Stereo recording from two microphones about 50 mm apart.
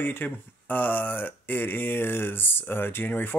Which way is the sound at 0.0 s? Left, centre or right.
Left.